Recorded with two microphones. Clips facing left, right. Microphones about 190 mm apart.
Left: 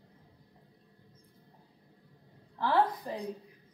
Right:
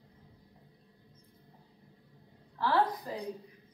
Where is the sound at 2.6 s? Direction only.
15° left (ahead or behind).